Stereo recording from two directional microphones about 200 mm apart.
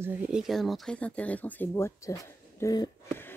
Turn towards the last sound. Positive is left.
turn(degrees=15)  # may be behind; listen again after turning